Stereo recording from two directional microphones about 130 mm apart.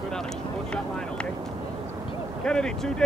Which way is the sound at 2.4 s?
5° left (ahead or behind).